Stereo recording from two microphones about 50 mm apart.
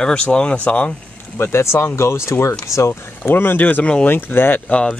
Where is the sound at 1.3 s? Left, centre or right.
Left.